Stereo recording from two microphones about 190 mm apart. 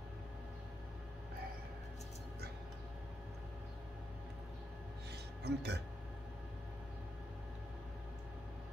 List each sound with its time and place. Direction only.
5.4 s speech: 60° right (ahead or behind)